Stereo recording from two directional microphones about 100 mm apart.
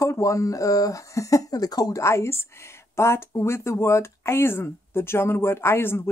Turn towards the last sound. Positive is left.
turn(degrees=25)  # may be behind; listen again after turning